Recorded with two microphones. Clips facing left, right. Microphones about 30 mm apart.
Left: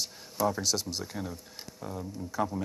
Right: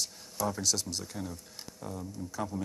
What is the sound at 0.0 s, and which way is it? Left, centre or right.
Speech, centre.